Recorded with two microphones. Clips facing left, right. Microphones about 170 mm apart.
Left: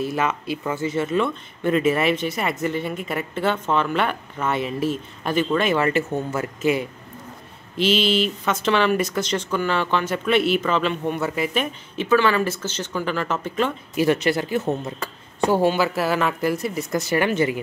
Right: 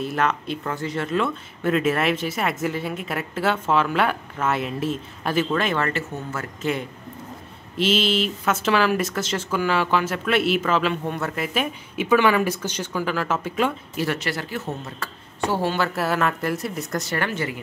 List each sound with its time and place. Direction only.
0.0 s speech: 5° left (ahead or behind)
5.9 s a woman's voice: 15° left (ahead or behind); by 13.7 s 5° right (ahead or behind)
13.9 s a woman's voice: 20° left (ahead or behind); by 17.2 s centre (ahead or behind)
17.2 s speech: 20° left (ahead or behind)